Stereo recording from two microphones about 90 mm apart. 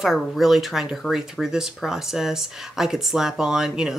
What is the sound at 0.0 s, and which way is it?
Speech, 5° right (ahead or behind).